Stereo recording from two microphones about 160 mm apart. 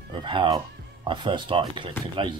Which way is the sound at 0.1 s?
30° right (ahead or behind).